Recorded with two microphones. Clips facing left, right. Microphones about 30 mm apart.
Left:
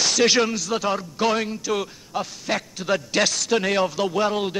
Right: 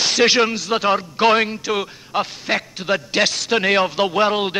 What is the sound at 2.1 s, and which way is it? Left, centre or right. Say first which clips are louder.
Speech: right 8 dB; right.